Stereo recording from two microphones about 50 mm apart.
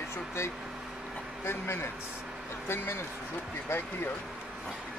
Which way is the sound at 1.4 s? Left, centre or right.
Left.